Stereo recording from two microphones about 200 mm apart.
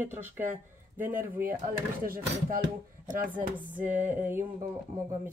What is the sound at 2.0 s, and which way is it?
Speech, 45° right (ahead or behind).